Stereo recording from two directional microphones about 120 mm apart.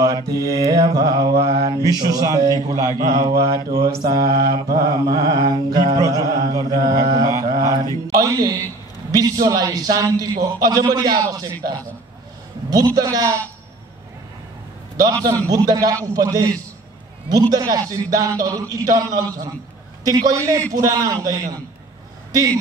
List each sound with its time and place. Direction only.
0.0 s mantra: 30° right (ahead or behind)
12.6 s mantra: 30° right (ahead or behind)
15.2 s mantra: 25° right (ahead or behind)
16.1 s a man's voice: 30° right (ahead or behind)
17.3 s mantra: 35° right (ahead or behind)
18.4 s a man's voice: 30° right (ahead or behind)